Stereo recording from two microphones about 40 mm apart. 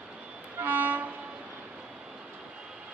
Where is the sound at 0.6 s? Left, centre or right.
Right.